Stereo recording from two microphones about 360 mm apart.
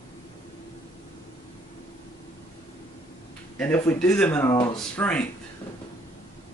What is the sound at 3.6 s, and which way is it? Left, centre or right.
Speech, centre.